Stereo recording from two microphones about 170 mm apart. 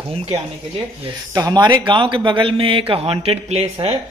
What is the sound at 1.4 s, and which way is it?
A man's voice, 20° right (ahead or behind).